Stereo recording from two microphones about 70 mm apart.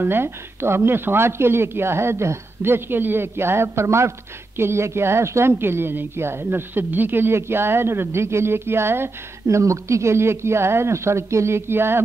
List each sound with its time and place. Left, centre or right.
0.0 s a woman's voice: right
9.6 s a woman's voice: right